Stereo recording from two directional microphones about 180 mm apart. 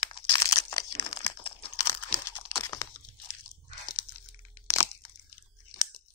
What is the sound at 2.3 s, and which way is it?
Crumpling, 15° left (ahead or behind).